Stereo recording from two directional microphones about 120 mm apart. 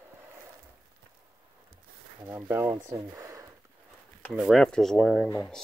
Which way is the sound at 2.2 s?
15° right (ahead or behind).